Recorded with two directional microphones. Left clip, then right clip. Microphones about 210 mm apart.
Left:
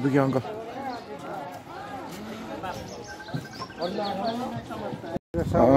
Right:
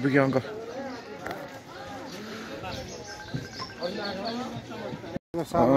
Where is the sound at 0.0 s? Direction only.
10° left (ahead or behind).